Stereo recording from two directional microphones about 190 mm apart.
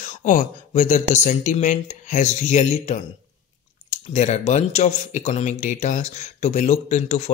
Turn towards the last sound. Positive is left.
turn(degrees=40)  # may be behind; listen again after turning